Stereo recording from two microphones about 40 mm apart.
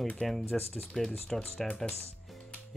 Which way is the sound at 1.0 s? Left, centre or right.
Left.